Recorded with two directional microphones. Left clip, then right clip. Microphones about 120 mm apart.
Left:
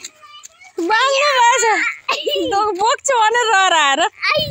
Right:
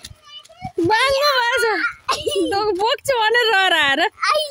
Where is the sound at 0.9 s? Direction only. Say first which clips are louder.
Left 2 dB; 60° right (ahead or behind).